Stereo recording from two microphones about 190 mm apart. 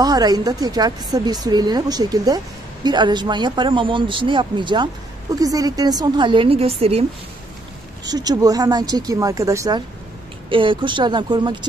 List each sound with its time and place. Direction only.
0.0 s a woman's voice: 20° right (ahead or behind)
8.0 s a woman's voice: 20° right (ahead or behind)